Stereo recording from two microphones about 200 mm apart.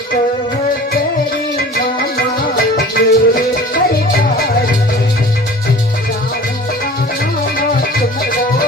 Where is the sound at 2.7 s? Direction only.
50° left (ahead or behind).